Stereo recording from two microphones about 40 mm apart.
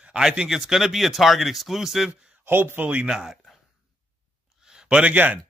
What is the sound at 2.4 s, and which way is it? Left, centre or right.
Speech, right.